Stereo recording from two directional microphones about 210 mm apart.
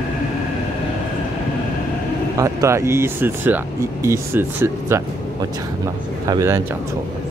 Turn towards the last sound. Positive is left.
turn(degrees=-15)  # may be behind; listen again after turning